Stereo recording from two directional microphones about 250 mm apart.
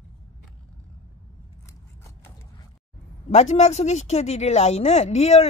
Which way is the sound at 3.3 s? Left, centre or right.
Left.